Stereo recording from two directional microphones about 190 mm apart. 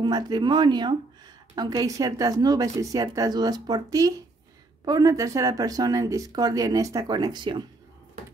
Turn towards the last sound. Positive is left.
turn(degrees=-25)  # may be behind; listen again after turning